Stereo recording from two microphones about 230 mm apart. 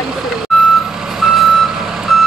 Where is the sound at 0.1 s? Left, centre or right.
Centre.